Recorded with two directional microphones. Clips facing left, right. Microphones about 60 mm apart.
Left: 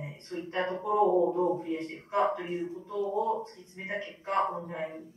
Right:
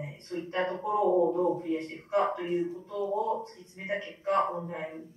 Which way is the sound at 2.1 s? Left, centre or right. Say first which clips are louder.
Right 1 dB; centre.